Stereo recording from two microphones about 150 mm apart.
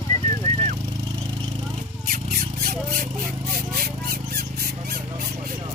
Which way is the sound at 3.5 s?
90° right.